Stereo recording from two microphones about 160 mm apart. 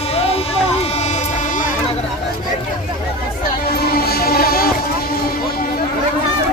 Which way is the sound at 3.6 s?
75° left (ahead or behind).